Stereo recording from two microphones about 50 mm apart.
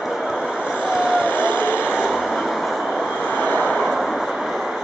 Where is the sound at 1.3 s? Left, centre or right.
Left.